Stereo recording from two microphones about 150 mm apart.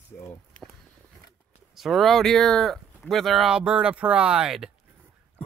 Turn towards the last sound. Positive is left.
turn(degrees=-5)  # may be behind; listen again after turning